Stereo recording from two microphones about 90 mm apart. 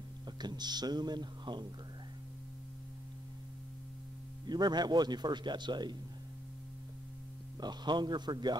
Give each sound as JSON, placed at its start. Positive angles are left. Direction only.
{"t": 0.4, "sound": "speech", "side_deg": -50}
{"t": 4.5, "sound": "speech", "side_deg": -50}
{"t": 7.6, "sound": "speech", "side_deg": -55}